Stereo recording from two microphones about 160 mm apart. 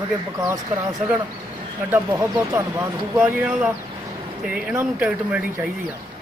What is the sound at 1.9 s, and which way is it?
A man's voice, 10° right (ahead or behind).